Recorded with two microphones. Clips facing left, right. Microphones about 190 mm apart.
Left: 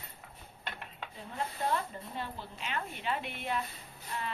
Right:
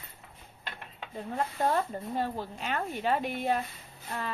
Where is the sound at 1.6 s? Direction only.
45° right (ahead or behind).